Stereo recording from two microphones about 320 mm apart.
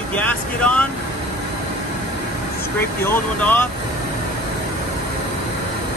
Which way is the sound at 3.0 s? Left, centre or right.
Centre.